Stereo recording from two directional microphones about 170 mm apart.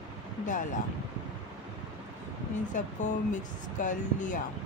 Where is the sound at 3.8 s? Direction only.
50° left (ahead or behind).